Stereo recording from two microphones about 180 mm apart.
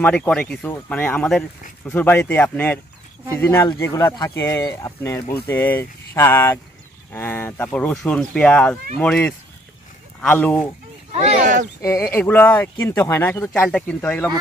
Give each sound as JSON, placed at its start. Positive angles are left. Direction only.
{"t": 0.0, "sound": "speech", "side_deg": 10}
{"t": 11.1, "sound": "speech", "side_deg": -35}
{"t": 11.8, "sound": "speech", "side_deg": 15}